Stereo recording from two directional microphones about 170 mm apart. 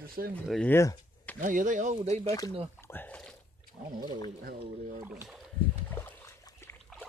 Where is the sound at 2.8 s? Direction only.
10° left (ahead or behind).